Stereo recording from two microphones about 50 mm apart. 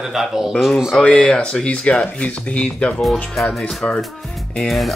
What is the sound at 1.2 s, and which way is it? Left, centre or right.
Speech, centre.